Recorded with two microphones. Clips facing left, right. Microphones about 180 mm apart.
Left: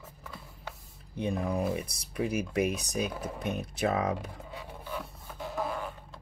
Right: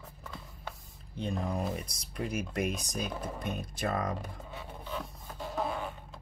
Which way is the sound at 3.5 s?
65° left (ahead or behind).